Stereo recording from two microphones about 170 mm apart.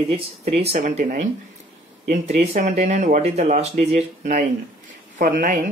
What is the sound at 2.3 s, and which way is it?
Speech, 40° right (ahead or behind).